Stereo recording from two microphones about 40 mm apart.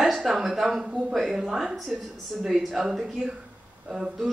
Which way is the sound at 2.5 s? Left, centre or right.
Centre.